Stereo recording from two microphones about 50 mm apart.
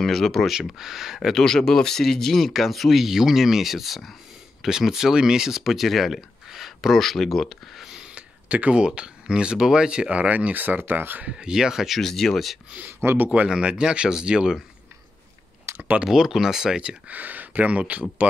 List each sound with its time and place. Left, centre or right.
0.0 s speech: centre
0.5 s speech: centre
1.3 s speech: centre
7.4 s a sound: centre
8.1 s speech: right
10.1 s speech: right
11.2 s speech: centre
12.0 s speech: centre
13.0 s speech: right
13.3 s speech: right
15.7 s a sound: right
16.0 s speech: centre
17.1 s speech: right